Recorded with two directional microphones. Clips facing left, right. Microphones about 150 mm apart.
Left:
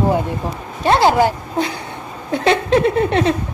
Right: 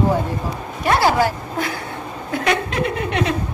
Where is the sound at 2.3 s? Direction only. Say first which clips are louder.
Left 6 dB; 25° left (ahead or behind).